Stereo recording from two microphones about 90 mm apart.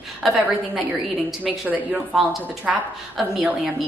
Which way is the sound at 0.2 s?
Centre (ahead or behind).